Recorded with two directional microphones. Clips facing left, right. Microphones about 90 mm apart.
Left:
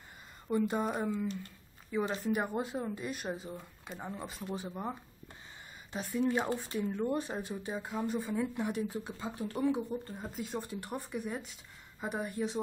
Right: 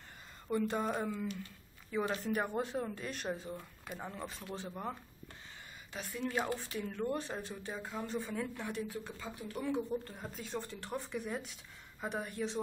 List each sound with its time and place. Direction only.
0.5 s speech: 15° left (ahead or behind)
5.9 s speech: 20° left (ahead or behind)
9.8 s speech: 5° left (ahead or behind)